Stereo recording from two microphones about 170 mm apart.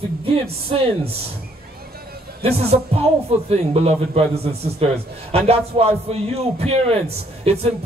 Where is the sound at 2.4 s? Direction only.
35° right (ahead or behind).